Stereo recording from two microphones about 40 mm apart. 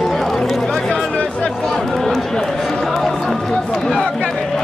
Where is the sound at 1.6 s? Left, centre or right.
Centre.